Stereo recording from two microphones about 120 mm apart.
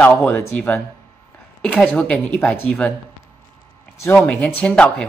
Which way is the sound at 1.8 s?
10° left (ahead or behind).